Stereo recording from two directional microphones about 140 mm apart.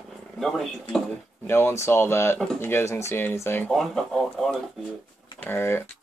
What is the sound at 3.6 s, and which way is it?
Speech, centre (ahead or behind).